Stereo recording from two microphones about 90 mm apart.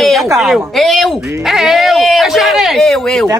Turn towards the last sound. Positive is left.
turn(degrees=5)  # may be behind; listen again after turning